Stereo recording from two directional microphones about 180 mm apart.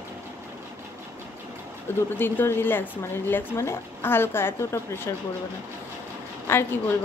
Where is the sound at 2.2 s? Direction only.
10° left (ahead or behind).